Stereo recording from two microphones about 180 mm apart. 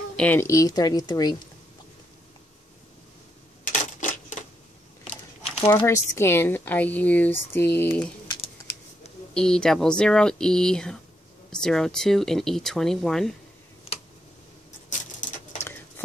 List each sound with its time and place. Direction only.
0.1 s speech: 10° left (ahead or behind)
3.6 s typewriter: 45° left (ahead or behind)
5.7 s speech: 15° left (ahead or behind)
9.3 s speech: 5° left (ahead or behind)
14.9 s patter: 45° left (ahead or behind)